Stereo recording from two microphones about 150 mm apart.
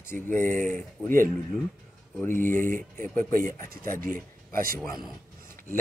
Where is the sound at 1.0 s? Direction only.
65° right (ahead or behind).